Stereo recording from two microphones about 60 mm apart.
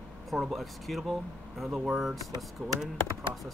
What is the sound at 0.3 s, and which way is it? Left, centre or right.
Speech, centre.